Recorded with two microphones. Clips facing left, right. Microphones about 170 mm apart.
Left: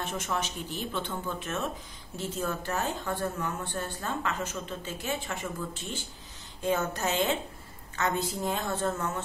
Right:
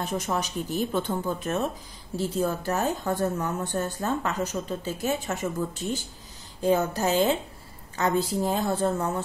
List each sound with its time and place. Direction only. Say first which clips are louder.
0.0 s a woman's voice: right 4 dB; 35° right (ahead or behind)